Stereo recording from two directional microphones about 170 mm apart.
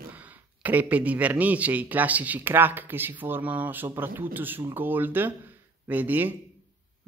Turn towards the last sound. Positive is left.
turn(degrees=-10)  # may be behind; listen again after turning